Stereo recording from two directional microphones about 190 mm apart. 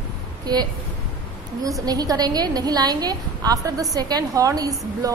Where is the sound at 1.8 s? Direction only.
20° right (ahead or behind).